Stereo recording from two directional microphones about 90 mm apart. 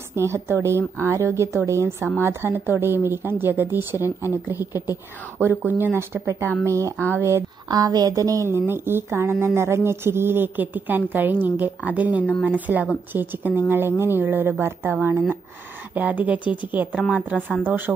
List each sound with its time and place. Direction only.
0.1 s speech: 30° right (ahead or behind)
6.6 s speech: 35° right (ahead or behind)
7.6 s a woman's voice: 45° right (ahead or behind); by 17.9 s 20° right (ahead or behind)